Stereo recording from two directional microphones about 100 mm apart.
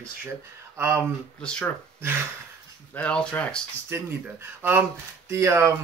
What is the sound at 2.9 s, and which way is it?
Speech, 10° left (ahead or behind).